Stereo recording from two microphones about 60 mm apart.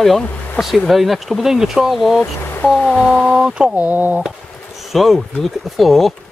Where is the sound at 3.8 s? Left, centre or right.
Right.